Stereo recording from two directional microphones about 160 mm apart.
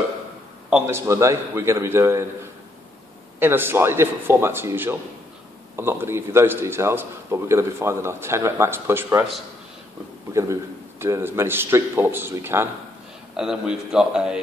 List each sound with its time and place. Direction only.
0.8 s a man's voice: 15° right (ahead or behind)
3.3 s a man's voice: 15° right (ahead or behind)
10.3 s a man's voice: 20° right (ahead or behind)
13.4 s a man's voice: 5° right (ahead or behind)